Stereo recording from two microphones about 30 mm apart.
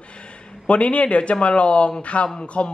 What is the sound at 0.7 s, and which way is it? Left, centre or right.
A man's voice, left.